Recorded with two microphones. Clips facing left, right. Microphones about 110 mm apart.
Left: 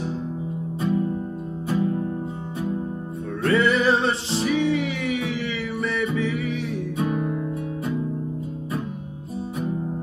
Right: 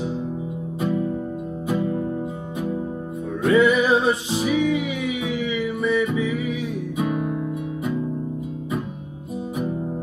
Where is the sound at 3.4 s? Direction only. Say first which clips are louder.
Right 2 dB; 5° right (ahead or behind).